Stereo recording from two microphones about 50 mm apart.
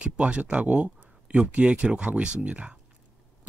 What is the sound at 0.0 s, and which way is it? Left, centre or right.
Speech, right.